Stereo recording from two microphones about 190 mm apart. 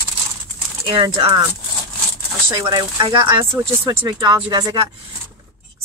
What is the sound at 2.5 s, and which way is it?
Speech, 20° right (ahead or behind).